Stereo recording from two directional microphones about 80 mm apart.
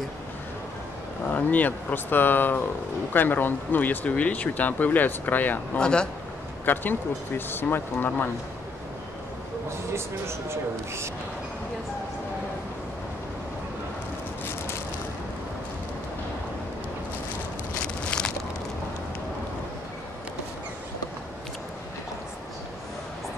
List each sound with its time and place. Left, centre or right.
1.3 s speech: centre
5.8 s speech: centre
6.6 s speech: left
9.9 s speech: right
17.8 s walk: centre